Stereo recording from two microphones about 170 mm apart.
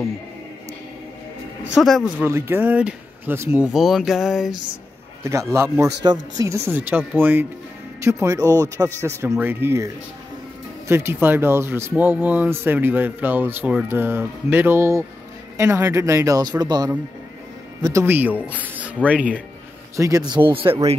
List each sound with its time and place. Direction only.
1.7 s speech: centre (ahead or behind)
2.2 s speech: 15° right (ahead or behind)
5.2 s speech: 15° right (ahead or behind)
20.0 s speech: 20° right (ahead or behind)
20.4 s speech: 30° right (ahead or behind)